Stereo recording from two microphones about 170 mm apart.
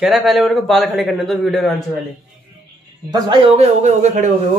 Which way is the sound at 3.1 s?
30° right (ahead or behind).